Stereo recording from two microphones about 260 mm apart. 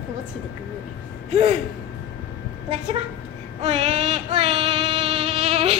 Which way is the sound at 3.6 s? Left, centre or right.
Right.